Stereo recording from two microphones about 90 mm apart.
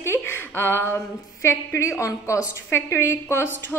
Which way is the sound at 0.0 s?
25° left (ahead or behind).